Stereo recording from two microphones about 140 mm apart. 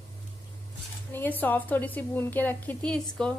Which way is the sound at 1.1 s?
15° left (ahead or behind).